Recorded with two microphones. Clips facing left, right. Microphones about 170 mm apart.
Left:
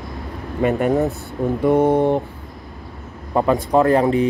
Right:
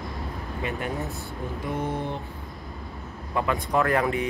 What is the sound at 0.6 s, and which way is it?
Mantra, 55° left (ahead or behind).